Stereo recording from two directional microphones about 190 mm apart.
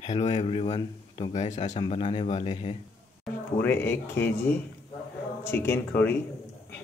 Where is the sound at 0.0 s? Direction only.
35° left (ahead or behind).